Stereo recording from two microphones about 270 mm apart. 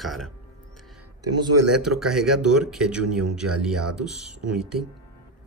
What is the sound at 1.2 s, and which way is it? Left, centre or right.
Speech, right.